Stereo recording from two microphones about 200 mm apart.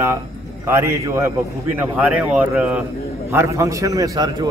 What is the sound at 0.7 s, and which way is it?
A man's voice, 10° right (ahead or behind).